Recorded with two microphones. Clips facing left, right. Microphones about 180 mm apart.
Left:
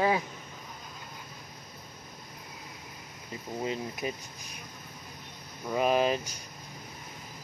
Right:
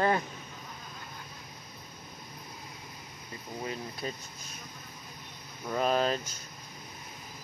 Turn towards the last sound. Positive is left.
turn(degrees=10)  # may be behind; listen again after turning